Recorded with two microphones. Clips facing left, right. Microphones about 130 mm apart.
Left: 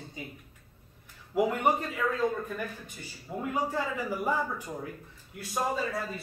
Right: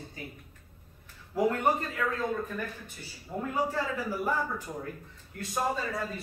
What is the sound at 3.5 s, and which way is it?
Speech, 15° left (ahead or behind).